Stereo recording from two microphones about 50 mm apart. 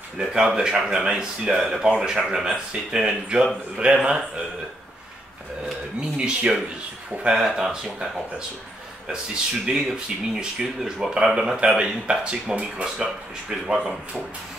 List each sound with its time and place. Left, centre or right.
0.2 s speech: centre
1.6 s speech: centre; by 4.2 s right
5.9 s speech: right
9.7 s speech: centre